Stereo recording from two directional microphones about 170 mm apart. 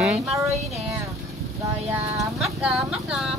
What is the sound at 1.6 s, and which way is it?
Speech, 20° right (ahead or behind).